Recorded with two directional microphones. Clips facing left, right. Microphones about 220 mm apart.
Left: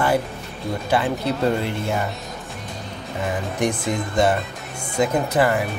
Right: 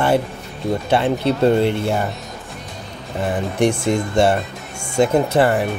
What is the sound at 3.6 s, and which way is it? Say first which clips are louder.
Speech: right 6 dB; 30° right (ahead or behind).